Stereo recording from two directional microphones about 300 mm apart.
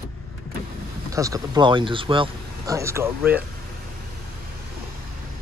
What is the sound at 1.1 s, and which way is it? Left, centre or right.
Speech, centre.